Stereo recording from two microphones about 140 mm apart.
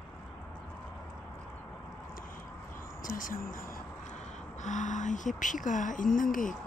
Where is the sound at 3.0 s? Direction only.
75° left (ahead or behind).